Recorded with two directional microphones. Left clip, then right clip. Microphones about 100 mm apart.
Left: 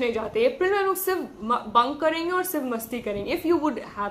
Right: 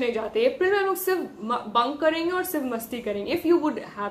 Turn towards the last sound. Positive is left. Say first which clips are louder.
# left 1 dB
turn(degrees=45)  # may be behind; listen again after turning